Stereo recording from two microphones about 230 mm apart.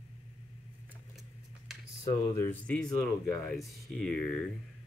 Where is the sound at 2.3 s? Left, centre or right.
Centre.